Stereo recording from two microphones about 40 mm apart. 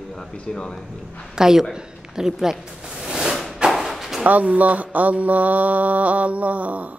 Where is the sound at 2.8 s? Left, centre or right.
Centre.